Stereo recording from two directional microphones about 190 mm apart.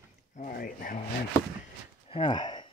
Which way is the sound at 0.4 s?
50° left (ahead or behind).